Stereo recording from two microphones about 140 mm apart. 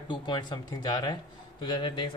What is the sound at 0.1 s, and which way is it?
Speech, 30° left (ahead or behind).